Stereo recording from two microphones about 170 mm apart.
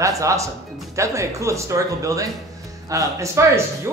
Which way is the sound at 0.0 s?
20° right (ahead or behind).